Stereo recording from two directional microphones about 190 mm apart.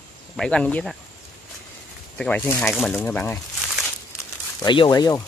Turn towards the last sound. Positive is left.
turn(degrees=20)  # may be behind; listen again after turning